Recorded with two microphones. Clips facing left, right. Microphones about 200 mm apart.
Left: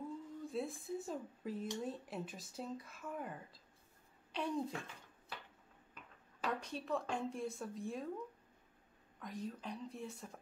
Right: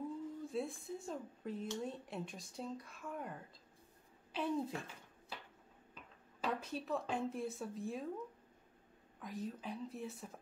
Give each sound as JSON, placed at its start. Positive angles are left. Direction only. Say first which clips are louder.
{"t": 0.5, "sound": "speech", "louder": "left 3 dB", "side_deg": 0}
{"t": 6.4, "sound": "speech", "louder": "right 1 dB", "side_deg": -5}
{"t": 9.2, "sound": "speech", "louder": "right 1 dB", "side_deg": -5}